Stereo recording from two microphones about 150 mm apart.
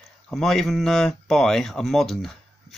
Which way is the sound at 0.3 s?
Centre (ahead or behind).